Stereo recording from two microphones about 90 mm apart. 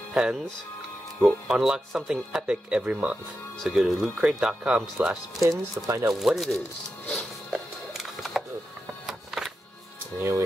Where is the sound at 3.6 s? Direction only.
Centre (ahead or behind).